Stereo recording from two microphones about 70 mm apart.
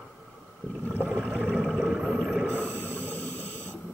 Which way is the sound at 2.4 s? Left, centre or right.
Centre.